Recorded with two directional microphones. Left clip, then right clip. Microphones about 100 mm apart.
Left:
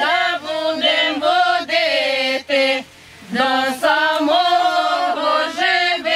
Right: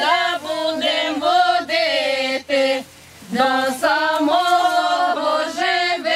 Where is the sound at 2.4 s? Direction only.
5° right (ahead or behind).